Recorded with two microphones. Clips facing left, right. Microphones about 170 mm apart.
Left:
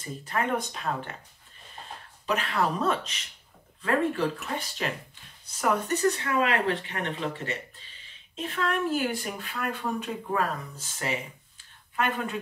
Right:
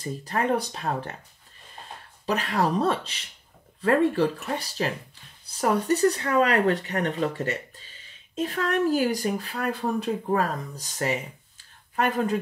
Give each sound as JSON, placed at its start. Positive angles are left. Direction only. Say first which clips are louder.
{"t": 0.0, "sound": "speech", "louder": "right 3 dB", "side_deg": -35}
{"t": 2.2, "sound": "speech", "louder": "right 2 dB", "side_deg": -35}